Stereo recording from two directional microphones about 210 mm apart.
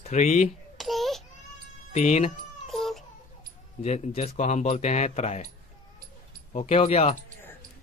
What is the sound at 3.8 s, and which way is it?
Speech, 30° left (ahead or behind).